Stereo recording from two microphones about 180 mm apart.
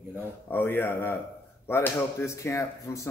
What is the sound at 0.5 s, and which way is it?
Speech, 10° left (ahead or behind).